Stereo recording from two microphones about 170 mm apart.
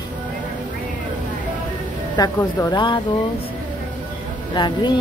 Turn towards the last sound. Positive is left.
turn(degrees=25)  # may be behind; listen again after turning